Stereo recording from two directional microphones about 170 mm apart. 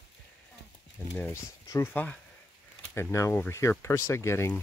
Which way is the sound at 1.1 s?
15° left (ahead or behind).